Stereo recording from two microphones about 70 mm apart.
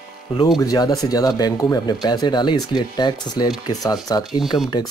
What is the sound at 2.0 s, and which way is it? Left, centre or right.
Speech, left.